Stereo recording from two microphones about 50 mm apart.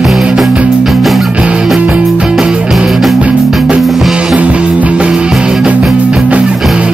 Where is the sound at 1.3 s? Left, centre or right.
Right.